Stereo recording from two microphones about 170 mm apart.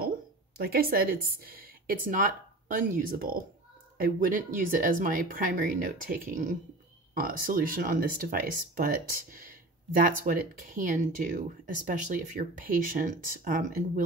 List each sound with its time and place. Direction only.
0.6 s speech: 65° right (ahead or behind)